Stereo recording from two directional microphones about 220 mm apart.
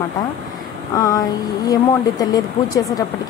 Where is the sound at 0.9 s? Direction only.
15° left (ahead or behind).